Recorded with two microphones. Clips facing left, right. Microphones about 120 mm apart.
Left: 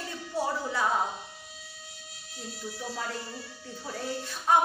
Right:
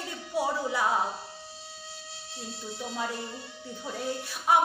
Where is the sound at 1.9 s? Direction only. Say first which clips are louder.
Right 5 dB; 30° right (ahead or behind).